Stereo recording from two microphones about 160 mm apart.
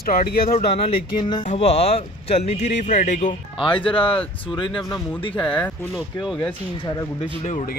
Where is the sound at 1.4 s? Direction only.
45° left (ahead or behind).